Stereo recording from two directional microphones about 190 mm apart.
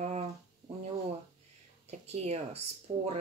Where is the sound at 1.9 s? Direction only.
35° right (ahead or behind).